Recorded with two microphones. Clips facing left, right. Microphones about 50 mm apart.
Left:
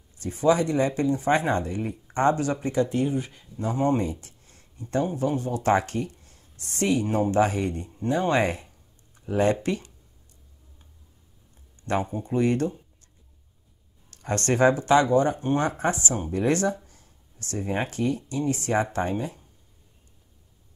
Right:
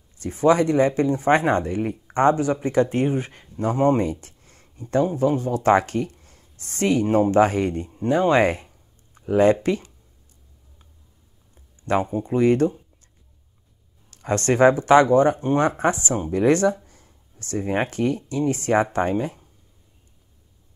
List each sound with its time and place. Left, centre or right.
0.2 s speech: right
3.1 s speech: right
11.8 s speech: right
14.1 s speech: right